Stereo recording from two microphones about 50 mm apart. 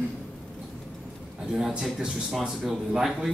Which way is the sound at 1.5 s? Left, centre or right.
Centre.